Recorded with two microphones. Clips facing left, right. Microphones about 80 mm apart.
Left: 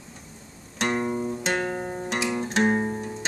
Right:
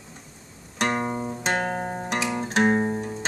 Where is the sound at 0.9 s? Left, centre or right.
Right.